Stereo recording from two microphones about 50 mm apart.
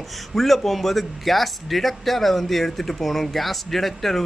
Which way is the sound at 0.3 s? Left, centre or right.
Centre.